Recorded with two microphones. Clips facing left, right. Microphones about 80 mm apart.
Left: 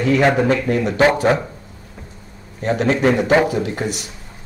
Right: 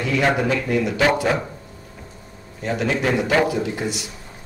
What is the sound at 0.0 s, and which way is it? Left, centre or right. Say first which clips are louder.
Speech: left 5 dB; left.